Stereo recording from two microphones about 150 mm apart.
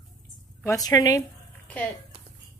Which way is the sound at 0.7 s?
25° left (ahead or behind).